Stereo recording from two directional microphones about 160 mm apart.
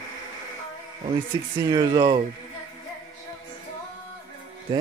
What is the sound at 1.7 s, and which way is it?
Speech, 25° right (ahead or behind).